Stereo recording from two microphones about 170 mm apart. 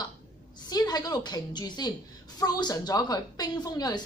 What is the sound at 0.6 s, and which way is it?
A woman's voice, 25° left (ahead or behind).